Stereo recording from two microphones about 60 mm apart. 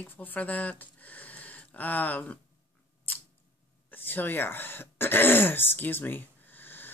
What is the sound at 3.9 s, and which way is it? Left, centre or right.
Speech, left.